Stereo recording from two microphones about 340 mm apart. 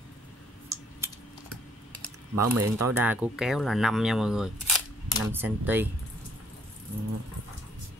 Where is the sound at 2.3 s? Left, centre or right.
Right.